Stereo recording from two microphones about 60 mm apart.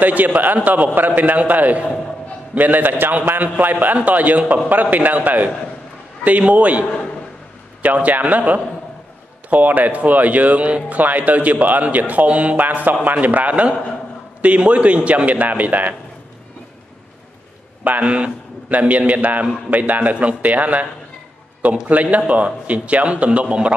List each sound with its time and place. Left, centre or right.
0.0 s a man's voice: right
17.8 s a man's voice: right
21.8 s speech: right